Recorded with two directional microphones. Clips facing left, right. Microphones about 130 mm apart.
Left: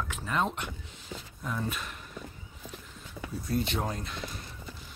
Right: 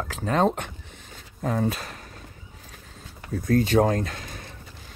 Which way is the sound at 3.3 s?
80° right.